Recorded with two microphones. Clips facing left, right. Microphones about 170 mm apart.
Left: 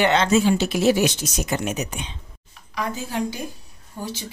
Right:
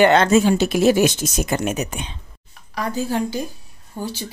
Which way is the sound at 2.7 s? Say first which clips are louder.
Right 4 dB; 35° right (ahead or behind).